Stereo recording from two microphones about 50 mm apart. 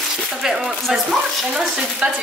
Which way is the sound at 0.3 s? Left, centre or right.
Centre.